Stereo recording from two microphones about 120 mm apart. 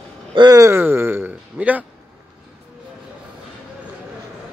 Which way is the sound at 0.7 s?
20° right (ahead or behind).